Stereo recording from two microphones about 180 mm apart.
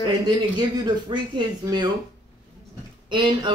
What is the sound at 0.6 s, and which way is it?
Speech, 25° right (ahead or behind).